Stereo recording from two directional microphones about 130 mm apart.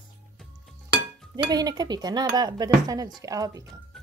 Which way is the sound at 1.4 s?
30° right (ahead or behind).